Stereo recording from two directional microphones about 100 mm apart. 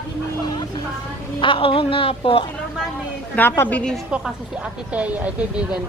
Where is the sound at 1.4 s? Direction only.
60° left (ahead or behind).